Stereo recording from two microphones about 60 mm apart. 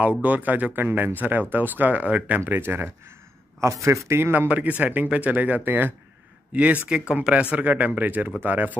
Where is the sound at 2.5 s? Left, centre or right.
Right.